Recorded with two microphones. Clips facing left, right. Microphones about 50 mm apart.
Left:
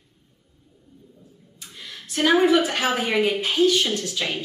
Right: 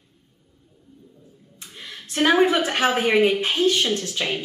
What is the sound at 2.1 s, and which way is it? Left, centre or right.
A woman's voice, right.